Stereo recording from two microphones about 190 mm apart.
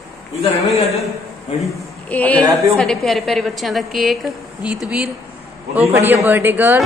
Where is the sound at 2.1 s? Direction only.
5° left (ahead or behind).